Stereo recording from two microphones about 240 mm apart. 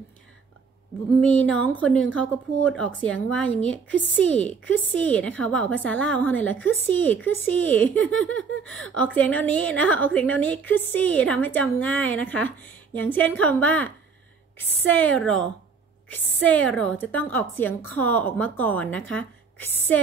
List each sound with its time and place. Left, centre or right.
1.2 s a woman's voice: centre